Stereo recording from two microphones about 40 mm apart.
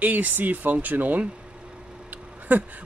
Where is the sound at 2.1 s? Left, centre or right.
Right.